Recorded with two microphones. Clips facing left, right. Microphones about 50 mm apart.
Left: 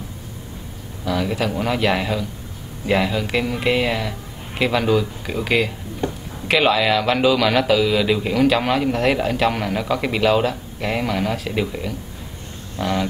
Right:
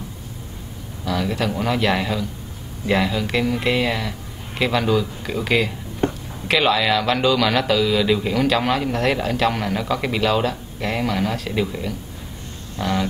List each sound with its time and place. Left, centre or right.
1.0 s a man's voice: centre
6.0 s a sound: right
6.4 s a man's voice: centre